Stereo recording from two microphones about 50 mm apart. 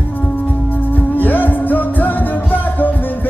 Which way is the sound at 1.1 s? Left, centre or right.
Left.